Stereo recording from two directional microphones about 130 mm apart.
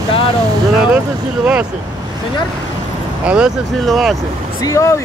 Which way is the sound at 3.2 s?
10° right (ahead or behind).